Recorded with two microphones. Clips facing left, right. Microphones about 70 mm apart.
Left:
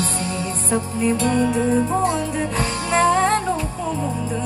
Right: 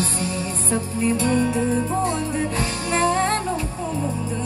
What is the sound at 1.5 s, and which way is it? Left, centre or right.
Music, left.